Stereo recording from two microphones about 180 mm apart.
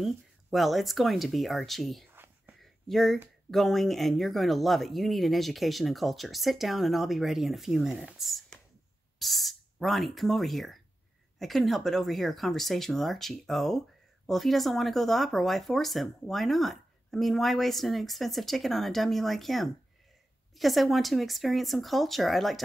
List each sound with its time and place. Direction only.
0.0 s speech: centre (ahead or behind)
2.1 s whispering: 10° right (ahead or behind)
2.6 s speech: centre (ahead or behind)